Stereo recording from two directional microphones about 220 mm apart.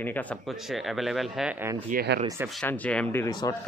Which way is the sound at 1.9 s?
50° right (ahead or behind).